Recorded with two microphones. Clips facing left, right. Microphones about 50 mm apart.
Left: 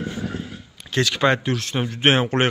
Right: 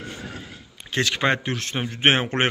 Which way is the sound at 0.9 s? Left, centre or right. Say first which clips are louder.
Left 3 dB; right.